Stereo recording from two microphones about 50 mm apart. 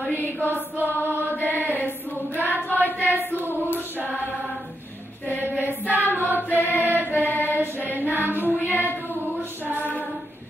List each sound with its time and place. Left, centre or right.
0.2 s mantra: left
2.3 s child singing: right
2.8 s choir: left
5.6 s choir: right
6.2 s choir: left
7.1 s mantra: left
7.4 s mantra: right
8.0 s a sound: right
8.7 s female singing: left